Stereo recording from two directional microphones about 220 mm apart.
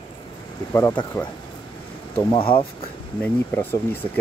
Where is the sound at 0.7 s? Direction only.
10° left (ahead or behind).